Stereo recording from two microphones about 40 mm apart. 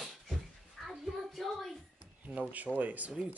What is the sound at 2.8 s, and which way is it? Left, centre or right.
Speech, right.